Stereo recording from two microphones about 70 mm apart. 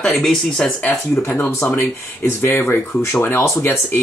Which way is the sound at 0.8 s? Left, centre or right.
Left.